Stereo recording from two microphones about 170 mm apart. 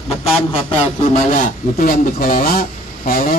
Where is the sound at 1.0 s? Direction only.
40° left (ahead or behind).